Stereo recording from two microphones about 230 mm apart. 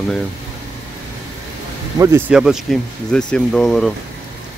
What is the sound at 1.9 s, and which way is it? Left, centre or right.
Speech, centre.